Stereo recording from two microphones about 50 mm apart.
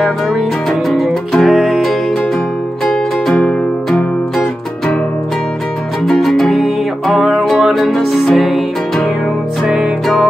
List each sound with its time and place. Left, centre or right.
0.0 s music: centre
6.0 s music: centre